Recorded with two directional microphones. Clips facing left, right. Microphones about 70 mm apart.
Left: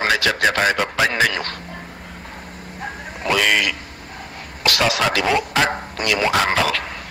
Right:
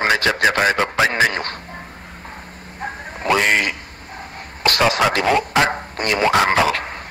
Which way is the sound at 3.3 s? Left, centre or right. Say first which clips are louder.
Even; right.